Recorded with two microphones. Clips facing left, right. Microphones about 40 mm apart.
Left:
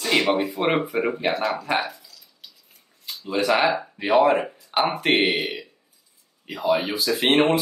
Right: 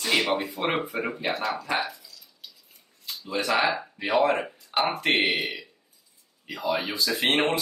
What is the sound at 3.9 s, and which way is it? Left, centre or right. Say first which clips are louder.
Speech: left 6 dB; left.